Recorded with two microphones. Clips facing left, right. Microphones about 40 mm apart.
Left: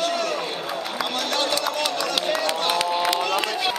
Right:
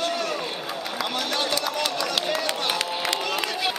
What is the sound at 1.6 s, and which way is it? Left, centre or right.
Run, centre.